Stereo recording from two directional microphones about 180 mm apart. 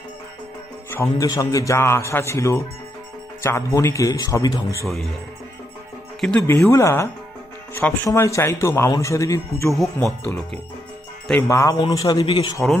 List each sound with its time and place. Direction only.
0.8 s a man's voice: 15° left (ahead or behind)
6.2 s a man's voice: 10° left (ahead or behind)
9.8 s speech: centre (ahead or behind)
11.2 s a man's voice: 15° left (ahead or behind)